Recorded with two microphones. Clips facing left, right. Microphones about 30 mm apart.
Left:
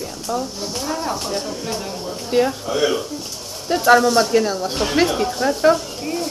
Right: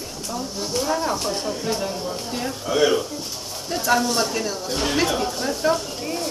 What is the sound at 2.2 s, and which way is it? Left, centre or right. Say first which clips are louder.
Speech: left 16 dB; left.